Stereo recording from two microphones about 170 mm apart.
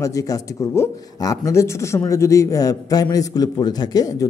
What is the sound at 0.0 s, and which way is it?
Speech, 20° left (ahead or behind).